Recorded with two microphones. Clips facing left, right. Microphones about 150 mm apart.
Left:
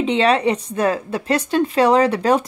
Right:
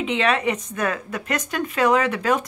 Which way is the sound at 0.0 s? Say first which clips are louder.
Left 5 dB; 30° left (ahead or behind).